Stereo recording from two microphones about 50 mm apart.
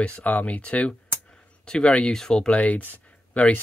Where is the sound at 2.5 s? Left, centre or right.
Left.